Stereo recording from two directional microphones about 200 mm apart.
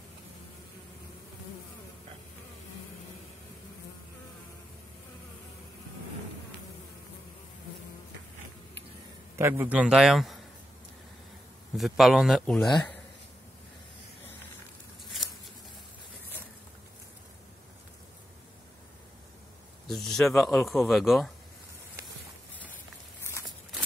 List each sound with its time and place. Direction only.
9.4 s speech: 10° right (ahead or behind)
11.7 s speech: centre (ahead or behind)
19.9 s speech: centre (ahead or behind)